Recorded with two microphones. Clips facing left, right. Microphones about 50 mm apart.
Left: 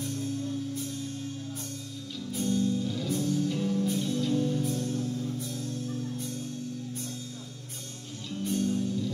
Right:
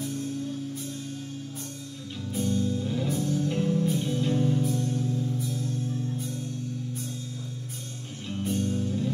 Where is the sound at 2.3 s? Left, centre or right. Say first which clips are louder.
Right 1 dB; centre.